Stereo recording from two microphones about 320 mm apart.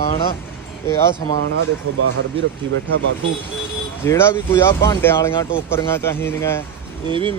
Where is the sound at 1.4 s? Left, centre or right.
Right.